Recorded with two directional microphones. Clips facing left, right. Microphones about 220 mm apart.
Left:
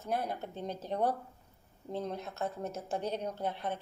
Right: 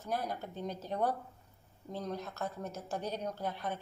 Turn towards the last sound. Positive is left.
turn(degrees=25)  # may be behind; listen again after turning